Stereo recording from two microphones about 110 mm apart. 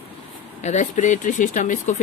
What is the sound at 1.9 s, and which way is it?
Speech, 90° left.